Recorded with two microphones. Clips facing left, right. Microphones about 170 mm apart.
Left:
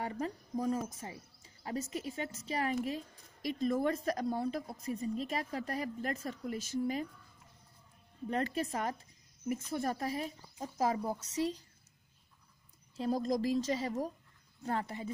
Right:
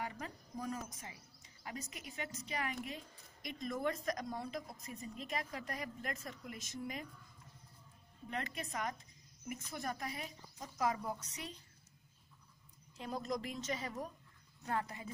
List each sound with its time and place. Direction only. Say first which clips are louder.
0.0 s a woman's voice: left 7 dB; 30° left (ahead or behind)
8.3 s a woman's voice: left 9 dB; 35° left (ahead or behind)
12.9 s a woman's voice: left 8 dB; 35° left (ahead or behind)